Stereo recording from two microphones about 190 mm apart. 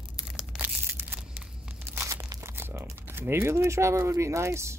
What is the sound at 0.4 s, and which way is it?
Crushing, 5° right (ahead or behind).